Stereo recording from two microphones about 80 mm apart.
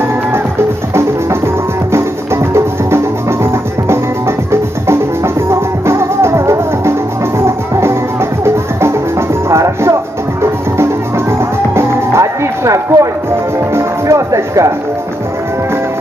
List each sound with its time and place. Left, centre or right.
1.9 s music: right
4.5 s music: right